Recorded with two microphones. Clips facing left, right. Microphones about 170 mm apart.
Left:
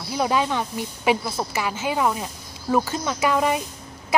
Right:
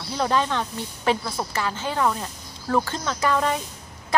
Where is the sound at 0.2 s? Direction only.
10° left (ahead or behind).